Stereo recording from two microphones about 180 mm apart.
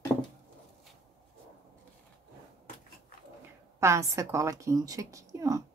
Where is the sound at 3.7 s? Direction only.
15° right (ahead or behind).